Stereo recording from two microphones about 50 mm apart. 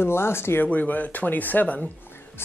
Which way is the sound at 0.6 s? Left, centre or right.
Left.